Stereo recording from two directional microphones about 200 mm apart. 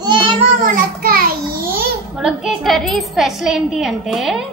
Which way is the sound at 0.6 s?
45° right (ahead or behind).